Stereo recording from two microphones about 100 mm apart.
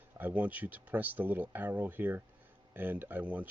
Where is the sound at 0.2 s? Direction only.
15° right (ahead or behind).